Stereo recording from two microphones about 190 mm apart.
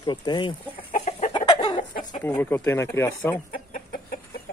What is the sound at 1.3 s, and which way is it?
Chicken, 20° left (ahead or behind).